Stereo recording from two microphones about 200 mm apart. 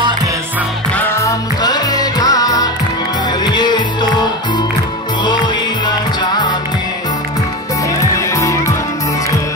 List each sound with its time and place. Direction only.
0.9 s music: 10° left (ahead or behind)
8.2 s music: 15° left (ahead or behind)